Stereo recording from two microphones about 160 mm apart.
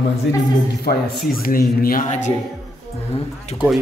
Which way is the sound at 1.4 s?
65° left (ahead or behind).